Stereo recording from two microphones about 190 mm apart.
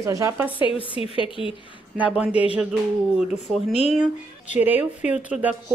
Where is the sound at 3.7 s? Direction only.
30° left (ahead or behind).